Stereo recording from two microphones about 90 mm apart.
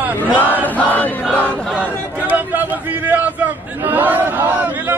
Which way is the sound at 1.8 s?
20° right (ahead or behind).